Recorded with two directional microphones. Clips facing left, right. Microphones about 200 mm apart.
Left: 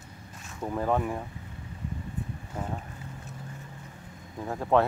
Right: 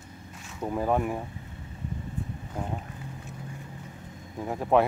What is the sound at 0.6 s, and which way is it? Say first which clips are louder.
Speech: right 1 dB; 10° right (ahead or behind).